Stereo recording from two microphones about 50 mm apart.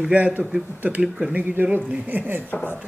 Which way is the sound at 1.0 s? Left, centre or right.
Centre.